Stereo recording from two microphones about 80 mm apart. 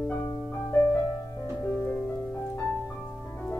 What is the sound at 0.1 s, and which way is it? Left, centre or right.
Music, left.